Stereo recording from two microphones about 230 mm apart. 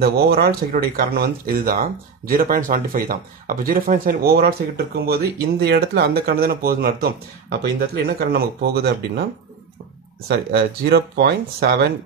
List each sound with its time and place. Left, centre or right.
0.0 s speech: right
10.2 s speech: right